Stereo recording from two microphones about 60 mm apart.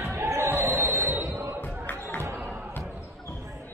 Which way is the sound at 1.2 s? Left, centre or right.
Right.